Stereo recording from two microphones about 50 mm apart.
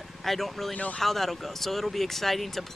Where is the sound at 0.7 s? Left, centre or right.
Left.